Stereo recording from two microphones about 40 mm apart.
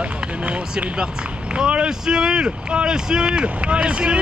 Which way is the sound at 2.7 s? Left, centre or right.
Right.